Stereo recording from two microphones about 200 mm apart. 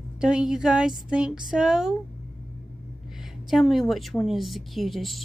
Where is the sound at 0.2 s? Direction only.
5° right (ahead or behind).